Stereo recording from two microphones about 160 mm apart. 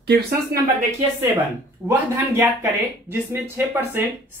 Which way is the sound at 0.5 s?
65° right (ahead or behind).